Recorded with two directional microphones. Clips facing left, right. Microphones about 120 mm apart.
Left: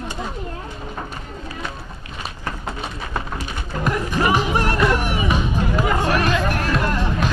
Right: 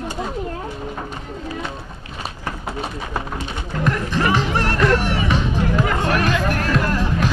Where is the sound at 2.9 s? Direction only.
20° right (ahead or behind).